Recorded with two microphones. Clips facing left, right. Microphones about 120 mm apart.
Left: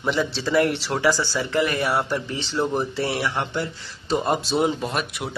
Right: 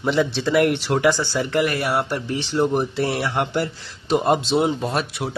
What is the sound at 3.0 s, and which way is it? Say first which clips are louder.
Speech: right 3 dB; 30° right (ahead or behind).